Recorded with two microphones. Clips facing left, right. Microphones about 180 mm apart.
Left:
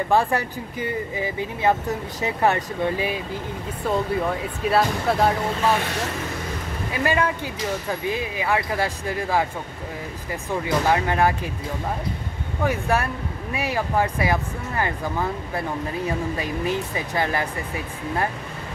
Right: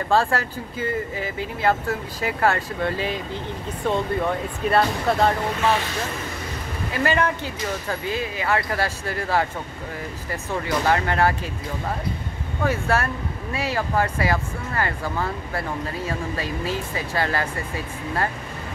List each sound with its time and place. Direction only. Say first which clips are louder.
0.1 s speech: right 1 dB; 15° left (ahead or behind)
7.0 s speech: even; 10° left (ahead or behind)
12.6 s speech: even; 15° left (ahead or behind)